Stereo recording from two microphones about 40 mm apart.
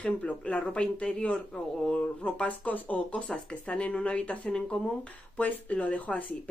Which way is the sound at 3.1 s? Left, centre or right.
Left.